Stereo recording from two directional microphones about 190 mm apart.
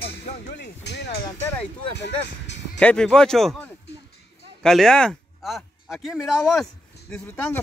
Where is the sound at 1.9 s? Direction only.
65° left (ahead or behind).